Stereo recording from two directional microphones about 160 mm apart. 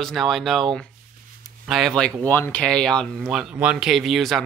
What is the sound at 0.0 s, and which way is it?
Speech, centre (ahead or behind).